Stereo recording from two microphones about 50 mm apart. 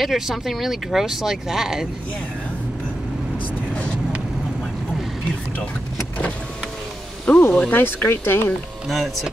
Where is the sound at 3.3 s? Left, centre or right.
Left.